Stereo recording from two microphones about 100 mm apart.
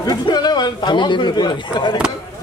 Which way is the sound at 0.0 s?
45° left (ahead or behind).